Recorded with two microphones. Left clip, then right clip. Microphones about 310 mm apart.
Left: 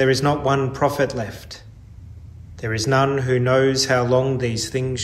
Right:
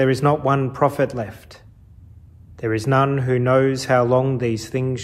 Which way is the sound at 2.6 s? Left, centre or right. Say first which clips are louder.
Right 1 dB; centre.